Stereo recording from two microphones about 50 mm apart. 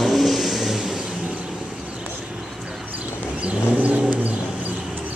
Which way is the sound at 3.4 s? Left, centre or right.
Right.